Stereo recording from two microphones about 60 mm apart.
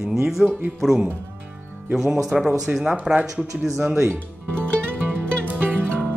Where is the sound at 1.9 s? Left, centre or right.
Centre.